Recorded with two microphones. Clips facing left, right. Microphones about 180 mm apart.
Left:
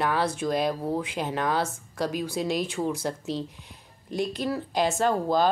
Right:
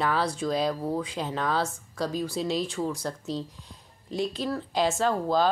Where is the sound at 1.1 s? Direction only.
15° left (ahead or behind).